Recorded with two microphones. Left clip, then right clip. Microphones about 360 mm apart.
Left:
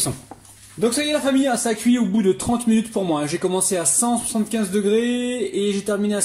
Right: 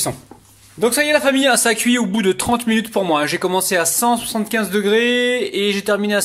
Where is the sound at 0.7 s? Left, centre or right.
Centre.